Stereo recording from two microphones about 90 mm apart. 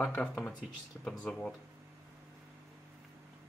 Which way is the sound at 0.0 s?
15° left (ahead or behind).